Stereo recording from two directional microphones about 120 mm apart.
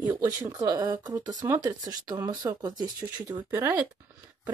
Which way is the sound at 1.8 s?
35° right (ahead or behind).